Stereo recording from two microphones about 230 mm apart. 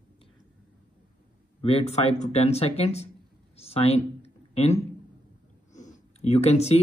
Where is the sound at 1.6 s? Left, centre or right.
Left.